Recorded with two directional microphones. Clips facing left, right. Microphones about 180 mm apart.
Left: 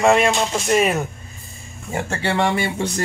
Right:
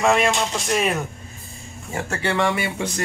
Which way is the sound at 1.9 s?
30° left (ahead or behind).